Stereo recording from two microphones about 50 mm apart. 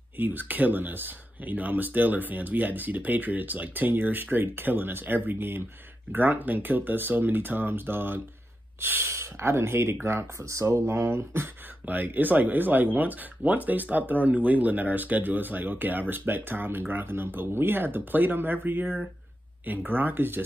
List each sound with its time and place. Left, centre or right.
0.2 s speech: right
9.1 s speech: right
10.7 s speech: right
11.8 s speech: right
19.9 s speech: right